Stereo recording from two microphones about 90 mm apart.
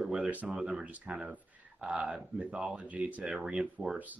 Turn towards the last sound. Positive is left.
turn(degrees=-5)  # may be behind; listen again after turning